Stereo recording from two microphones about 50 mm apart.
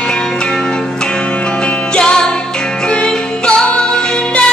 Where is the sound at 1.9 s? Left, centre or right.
Centre.